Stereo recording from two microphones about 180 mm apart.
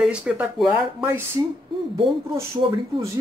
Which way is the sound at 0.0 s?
5° right (ahead or behind).